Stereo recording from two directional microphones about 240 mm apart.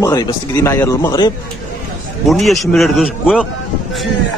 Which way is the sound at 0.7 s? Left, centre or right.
Centre.